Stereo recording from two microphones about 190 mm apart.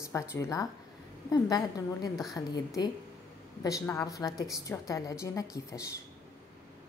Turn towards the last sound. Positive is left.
turn(degrees=15)  # may be behind; listen again after turning